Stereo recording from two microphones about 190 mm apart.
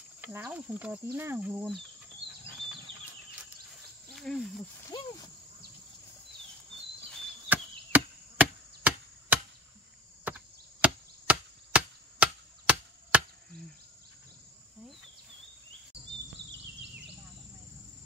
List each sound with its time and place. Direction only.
0.2 s speech: 10° right (ahead or behind)
4.1 s speech: centre (ahead or behind)
4.9 s speech: 20° left (ahead or behind)
7.4 s chop: 10° right (ahead or behind)